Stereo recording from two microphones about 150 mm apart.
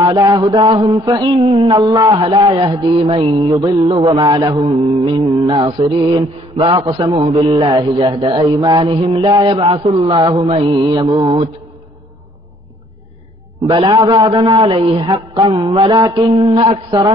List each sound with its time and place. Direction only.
0.0 s mantra: 25° right (ahead or behind)
5.7 s mantra: 35° right (ahead or behind)
9.7 s mantra: 35° right (ahead or behind)
13.8 s mantra: 20° right (ahead or behind)